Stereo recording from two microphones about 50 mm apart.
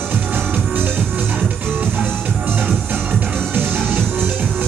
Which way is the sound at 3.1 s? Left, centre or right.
Right.